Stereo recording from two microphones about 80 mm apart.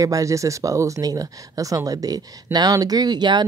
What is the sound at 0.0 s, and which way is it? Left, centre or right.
Speech, right.